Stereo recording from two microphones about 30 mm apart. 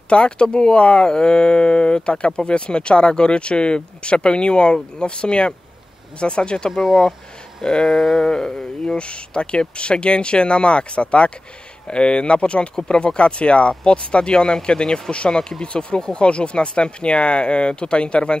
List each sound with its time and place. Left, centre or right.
0.1 s speech: left
1.1 s speech: left
6.7 s speech: centre
7.8 s a sound: centre
8.3 s a sound: left
8.9 s speech: left